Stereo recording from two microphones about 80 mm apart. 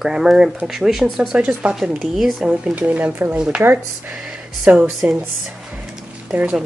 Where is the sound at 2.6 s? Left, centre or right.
Centre.